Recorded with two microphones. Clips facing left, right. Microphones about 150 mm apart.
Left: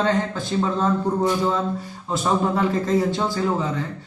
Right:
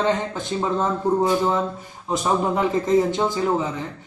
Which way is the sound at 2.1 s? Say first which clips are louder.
Even; 15° right (ahead or behind).